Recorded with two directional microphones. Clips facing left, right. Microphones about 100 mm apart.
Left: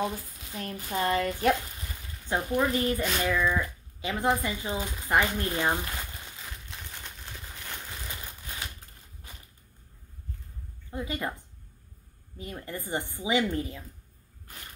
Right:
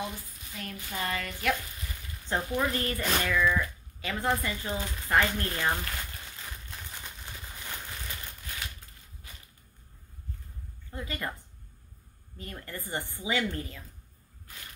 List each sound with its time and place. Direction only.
0.0 s speech: 30° left (ahead or behind)
2.2 s speech: 10° left (ahead or behind)
6.4 s a sound: centre (ahead or behind)
8.1 s crumpling: 15° left (ahead or behind)
10.9 s speech: 15° left (ahead or behind)
12.4 s speech: 15° left (ahead or behind)